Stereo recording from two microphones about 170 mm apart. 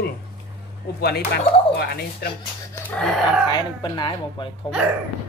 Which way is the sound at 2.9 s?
Centre (ahead or behind).